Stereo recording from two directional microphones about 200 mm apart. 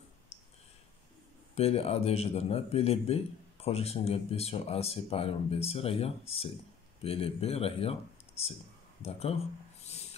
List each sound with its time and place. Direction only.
1.5 s speech: 30° left (ahead or behind)